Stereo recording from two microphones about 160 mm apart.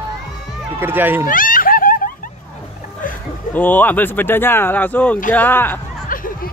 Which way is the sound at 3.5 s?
10° left (ahead or behind).